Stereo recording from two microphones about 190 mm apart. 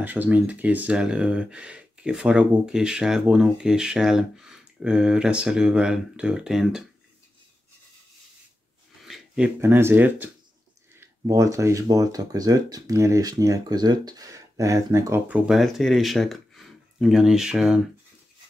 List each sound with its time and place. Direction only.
0.0 s speech: 10° right (ahead or behind)
9.0 s speech: centre (ahead or behind)